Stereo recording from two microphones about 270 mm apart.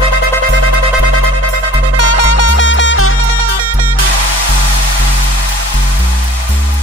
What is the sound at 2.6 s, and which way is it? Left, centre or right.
Music, left.